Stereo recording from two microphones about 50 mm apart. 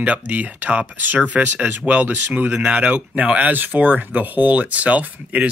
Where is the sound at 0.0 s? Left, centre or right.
Right.